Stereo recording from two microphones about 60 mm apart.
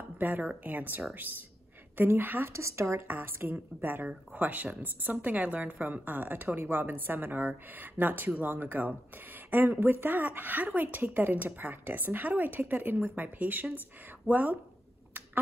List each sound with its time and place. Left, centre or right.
0.2 s a woman's voice: right
2.5 s speech: right
3.3 s a woman's voice: right